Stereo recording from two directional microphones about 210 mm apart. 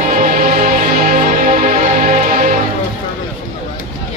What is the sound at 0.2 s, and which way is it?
Music, 40° right (ahead or behind).